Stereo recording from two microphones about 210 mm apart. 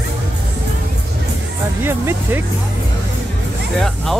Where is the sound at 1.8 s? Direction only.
10° right (ahead or behind).